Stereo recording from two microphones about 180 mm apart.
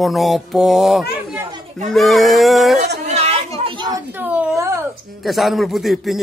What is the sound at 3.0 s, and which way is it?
Children playing, 35° right (ahead or behind).